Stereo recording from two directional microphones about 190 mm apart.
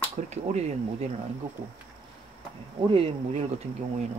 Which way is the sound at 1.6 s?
45° right (ahead or behind).